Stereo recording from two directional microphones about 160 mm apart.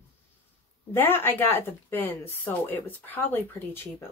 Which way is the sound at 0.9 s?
15° left (ahead or behind).